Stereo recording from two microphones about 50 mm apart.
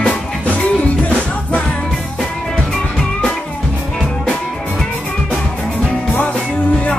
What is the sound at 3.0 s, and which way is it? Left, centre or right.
Music, centre.